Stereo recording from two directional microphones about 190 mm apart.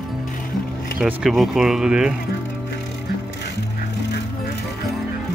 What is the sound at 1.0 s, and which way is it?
Speech, centre (ahead or behind).